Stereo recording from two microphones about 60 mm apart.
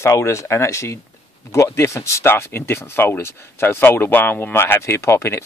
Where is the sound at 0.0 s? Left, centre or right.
Left.